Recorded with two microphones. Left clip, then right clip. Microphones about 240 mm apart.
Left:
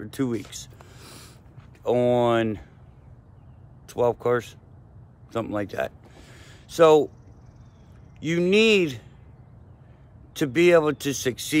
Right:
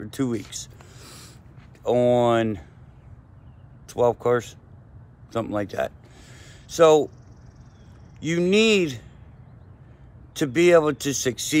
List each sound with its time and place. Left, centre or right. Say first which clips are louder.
0.0 s a sound: right 1 dB; centre
1.8 s speech: right 2 dB; centre
3.8 s speech: right 2 dB; centre
5.3 s a sound: right 2 dB; centre
8.2 s speech: even; centre
10.3 s speech: right 1 dB; centre